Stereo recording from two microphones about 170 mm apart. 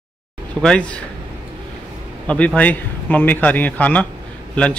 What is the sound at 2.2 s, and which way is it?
A man's voice, 10° left (ahead or behind).